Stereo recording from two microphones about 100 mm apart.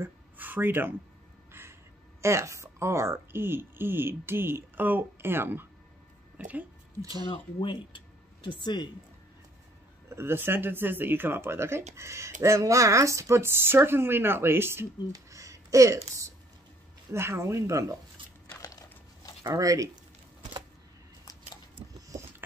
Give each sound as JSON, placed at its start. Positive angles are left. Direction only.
{"t": 0.0, "sound": "a sound", "side_deg": -20}
{"t": 1.5, "sound": "crow", "side_deg": -25}
{"t": 2.2, "sound": "a woman's voice", "side_deg": -30}
{"t": 7.0, "sound": "speech", "side_deg": -35}
{"t": 7.2, "sound": "speech", "side_deg": 55}
{"t": 10.0, "sound": "speech", "side_deg": -25}
{"t": 15.1, "sound": "a sound", "side_deg": -35}
{"t": 17.1, "sound": "speech", "side_deg": -25}
{"t": 18.6, "sound": "a sound", "side_deg": 40}
{"t": 19.4, "sound": "speech", "side_deg": -35}
{"t": 21.9, "sound": "biting", "side_deg": -35}